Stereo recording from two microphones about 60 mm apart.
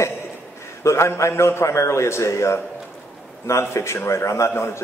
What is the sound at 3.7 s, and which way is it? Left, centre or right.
A man's voice, left.